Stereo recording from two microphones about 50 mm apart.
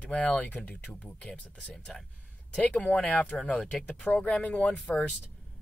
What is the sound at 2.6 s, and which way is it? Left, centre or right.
Speech, left.